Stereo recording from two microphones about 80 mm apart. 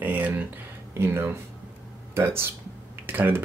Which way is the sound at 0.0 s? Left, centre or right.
Right.